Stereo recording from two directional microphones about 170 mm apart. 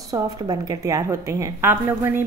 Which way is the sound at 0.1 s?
20° right (ahead or behind).